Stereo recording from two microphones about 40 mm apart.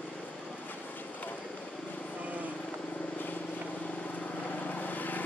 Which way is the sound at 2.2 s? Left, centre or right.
Right.